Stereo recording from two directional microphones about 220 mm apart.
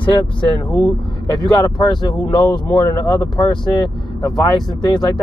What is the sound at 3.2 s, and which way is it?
Speech, 20° left (ahead or behind).